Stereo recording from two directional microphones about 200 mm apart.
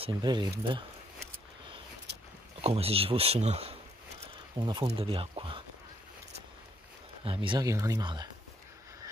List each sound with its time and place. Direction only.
0.0 s speech: 20° right (ahead or behind)
2.6 s speech: 30° right (ahead or behind)
7.2 s speech: 25° right (ahead or behind)